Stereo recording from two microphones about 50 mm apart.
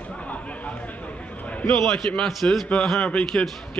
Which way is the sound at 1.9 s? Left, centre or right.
Centre.